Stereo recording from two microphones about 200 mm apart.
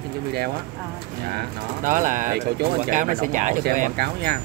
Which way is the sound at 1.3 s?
40° right (ahead or behind).